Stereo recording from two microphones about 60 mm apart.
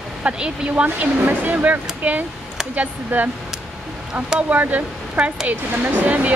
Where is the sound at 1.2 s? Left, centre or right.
Right.